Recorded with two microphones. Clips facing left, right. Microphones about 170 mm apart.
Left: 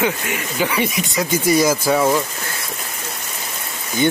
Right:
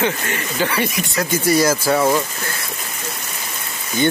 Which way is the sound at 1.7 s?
Centre (ahead or behind).